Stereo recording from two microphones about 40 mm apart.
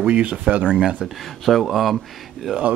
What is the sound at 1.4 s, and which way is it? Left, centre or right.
Speech, centre.